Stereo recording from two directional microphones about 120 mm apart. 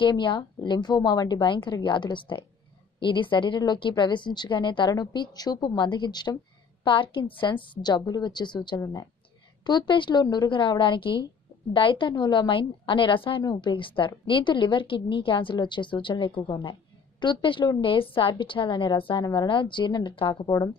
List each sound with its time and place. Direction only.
0.0 s a woman's voice: 40° left (ahead or behind)
20.4 s speech: 30° left (ahead or behind)